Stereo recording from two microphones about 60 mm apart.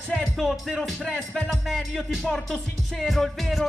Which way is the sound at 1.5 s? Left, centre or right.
Centre.